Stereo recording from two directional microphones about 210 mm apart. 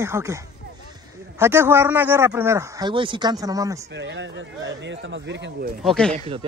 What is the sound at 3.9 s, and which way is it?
Speech, 60° right (ahead or behind).